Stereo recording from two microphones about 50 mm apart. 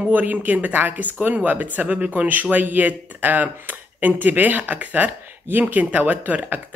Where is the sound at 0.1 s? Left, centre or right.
Right.